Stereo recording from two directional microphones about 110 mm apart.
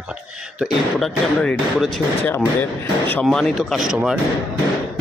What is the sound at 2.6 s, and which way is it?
Speech, 15° left (ahead or behind).